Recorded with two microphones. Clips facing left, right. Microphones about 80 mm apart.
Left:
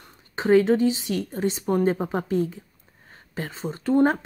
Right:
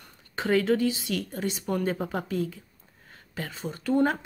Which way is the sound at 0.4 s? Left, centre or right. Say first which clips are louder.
Left 5 dB; left.